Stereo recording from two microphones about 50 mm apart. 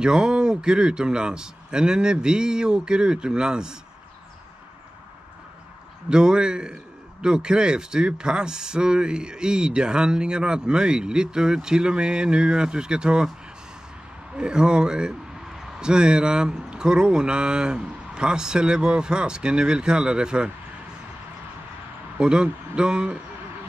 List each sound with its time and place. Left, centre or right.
0.0 s a man's voice: centre
6.0 s a man's voice: centre
14.3 s a man's voice: centre
22.2 s a man's voice: centre